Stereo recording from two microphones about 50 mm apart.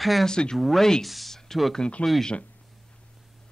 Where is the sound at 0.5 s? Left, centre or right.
Centre.